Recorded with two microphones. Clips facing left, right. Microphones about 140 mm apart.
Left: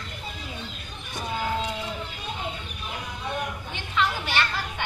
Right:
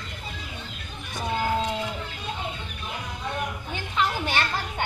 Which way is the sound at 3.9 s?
40° right (ahead or behind).